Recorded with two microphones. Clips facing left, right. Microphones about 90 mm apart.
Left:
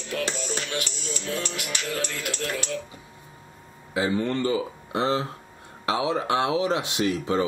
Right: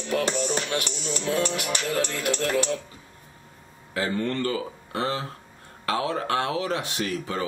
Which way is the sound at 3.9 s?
15° left (ahead or behind).